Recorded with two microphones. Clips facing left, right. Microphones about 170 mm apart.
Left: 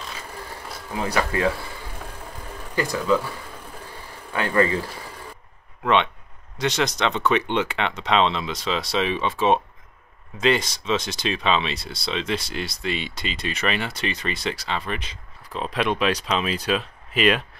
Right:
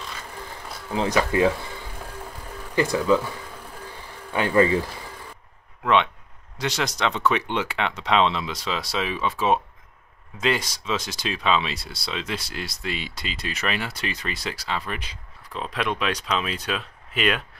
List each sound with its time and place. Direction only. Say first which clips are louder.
0.9 s speech: right 3 dB; 20° right (ahead or behind)
2.7 s speech: right 2 dB; 20° right (ahead or behind)
4.3 s speech: right 2 dB; 15° right (ahead or behind)
6.6 s speech: left 3 dB; 10° right (ahead or behind)
15.5 s speech: left 3 dB; centre (ahead or behind)